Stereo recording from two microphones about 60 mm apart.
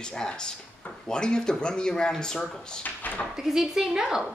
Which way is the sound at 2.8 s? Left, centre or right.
Left.